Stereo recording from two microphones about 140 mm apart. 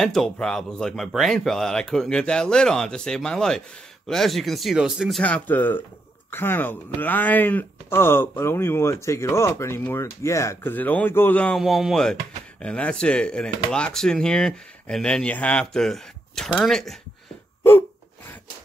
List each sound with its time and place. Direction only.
0.0 s speech: centre (ahead or behind)
5.2 s speech: 10° left (ahead or behind)
17.6 s gasp: 15° left (ahead or behind)